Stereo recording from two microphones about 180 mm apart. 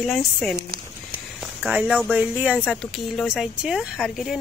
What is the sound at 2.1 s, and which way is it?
Speech, 10° right (ahead or behind).